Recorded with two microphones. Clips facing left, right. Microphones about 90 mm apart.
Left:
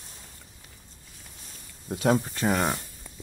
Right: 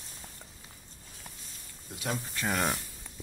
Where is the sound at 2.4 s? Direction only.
15° left (ahead or behind).